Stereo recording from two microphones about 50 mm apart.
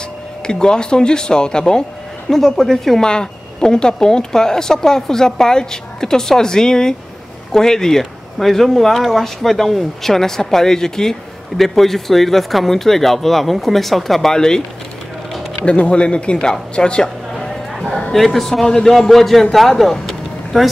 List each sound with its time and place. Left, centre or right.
0.5 s speech: centre
15.6 s speech: left
17.4 s a sound: centre
18.1 s speech: centre